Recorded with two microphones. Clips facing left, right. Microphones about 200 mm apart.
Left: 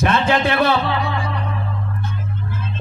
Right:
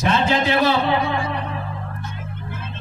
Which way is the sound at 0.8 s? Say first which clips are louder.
Right 2 dB; 20° right (ahead or behind).